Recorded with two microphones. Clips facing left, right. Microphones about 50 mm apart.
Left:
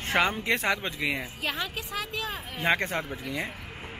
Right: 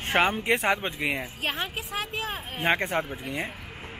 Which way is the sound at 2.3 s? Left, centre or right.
Centre.